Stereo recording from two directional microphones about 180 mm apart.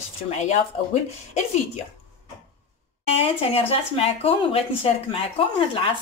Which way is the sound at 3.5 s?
35° left (ahead or behind).